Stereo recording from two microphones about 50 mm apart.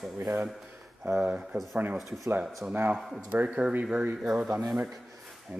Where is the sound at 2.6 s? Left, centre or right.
Right.